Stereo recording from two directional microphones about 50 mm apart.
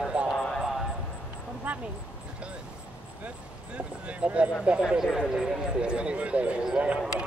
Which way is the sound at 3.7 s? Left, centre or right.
Right.